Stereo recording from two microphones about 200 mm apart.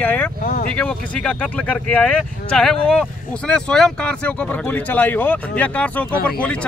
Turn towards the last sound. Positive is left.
turn(degrees=5)  # may be behind; listen again after turning